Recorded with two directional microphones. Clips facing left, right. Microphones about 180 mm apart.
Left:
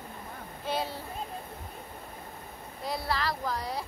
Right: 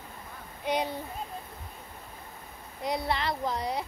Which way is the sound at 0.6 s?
15° right (ahead or behind).